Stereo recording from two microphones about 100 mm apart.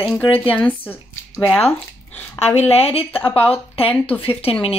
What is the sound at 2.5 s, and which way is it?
A woman's voice, 90° left.